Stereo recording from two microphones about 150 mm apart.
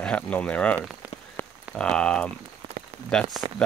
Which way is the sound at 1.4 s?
15° left (ahead or behind).